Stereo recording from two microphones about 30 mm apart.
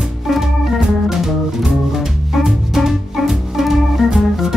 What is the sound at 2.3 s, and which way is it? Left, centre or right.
Organ, centre.